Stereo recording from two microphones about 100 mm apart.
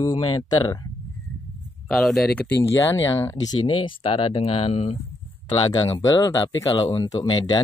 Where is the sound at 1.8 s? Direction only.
5° left (ahead or behind).